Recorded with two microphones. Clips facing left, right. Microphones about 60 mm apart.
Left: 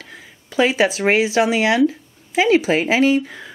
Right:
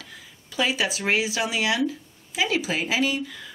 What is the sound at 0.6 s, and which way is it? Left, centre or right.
Speech, left.